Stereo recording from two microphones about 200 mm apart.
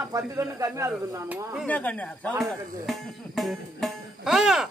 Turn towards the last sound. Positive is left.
turn(degrees=0)  # may be behind; listen again after turning